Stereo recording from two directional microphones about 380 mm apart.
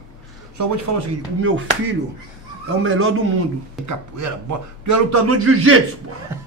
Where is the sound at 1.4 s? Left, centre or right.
Right.